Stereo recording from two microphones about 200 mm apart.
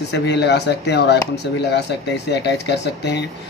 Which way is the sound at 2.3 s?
60° left (ahead or behind).